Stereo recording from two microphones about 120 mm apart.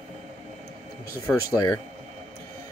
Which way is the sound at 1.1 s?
30° left (ahead or behind).